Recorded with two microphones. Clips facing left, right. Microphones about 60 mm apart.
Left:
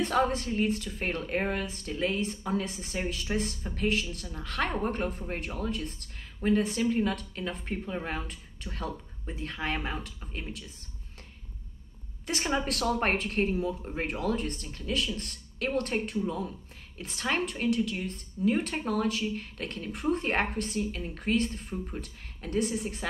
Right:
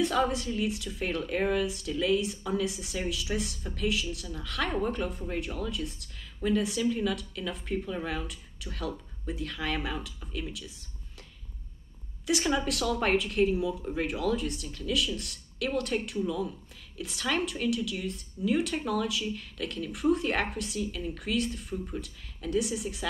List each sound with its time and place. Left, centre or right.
0.0 s a woman's voice: left
12.3 s a woman's voice: left